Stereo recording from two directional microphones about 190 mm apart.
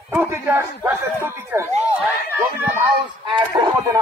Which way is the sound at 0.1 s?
10° right (ahead or behind).